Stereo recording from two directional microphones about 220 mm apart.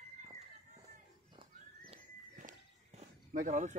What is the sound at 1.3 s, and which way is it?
Walk, 25° right (ahead or behind).